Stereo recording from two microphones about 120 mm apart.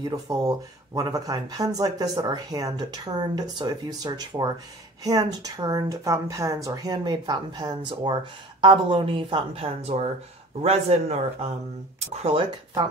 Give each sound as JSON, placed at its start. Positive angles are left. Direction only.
{"t": 0.1, "sound": "a woman's voice", "side_deg": -30}
{"t": 12.4, "sound": "speech", "side_deg": -45}